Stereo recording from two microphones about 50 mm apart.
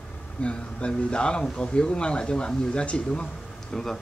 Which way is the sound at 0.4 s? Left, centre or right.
Left.